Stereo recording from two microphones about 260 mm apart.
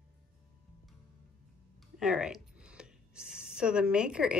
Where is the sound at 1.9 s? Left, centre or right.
Centre.